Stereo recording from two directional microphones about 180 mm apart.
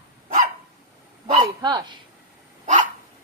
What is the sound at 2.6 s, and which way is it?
Dog, 40° right (ahead or behind).